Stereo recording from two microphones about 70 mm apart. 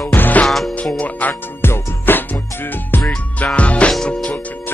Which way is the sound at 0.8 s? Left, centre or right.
Centre.